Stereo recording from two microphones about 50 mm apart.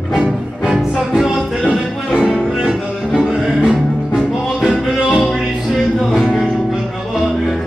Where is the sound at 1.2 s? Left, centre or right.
Centre.